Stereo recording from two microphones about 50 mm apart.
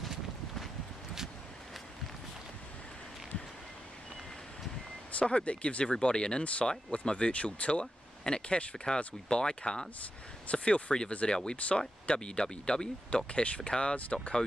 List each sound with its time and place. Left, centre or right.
0.0 s wind: centre
5.2 s speech: left
7.8 s a sound: centre
8.4 s speech: centre
12.1 s speech: centre